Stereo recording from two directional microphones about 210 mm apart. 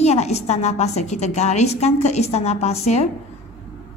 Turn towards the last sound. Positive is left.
turn(degrees=30)  # may be behind; listen again after turning